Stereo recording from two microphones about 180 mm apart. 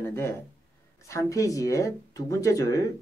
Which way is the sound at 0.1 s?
15° left (ahead or behind).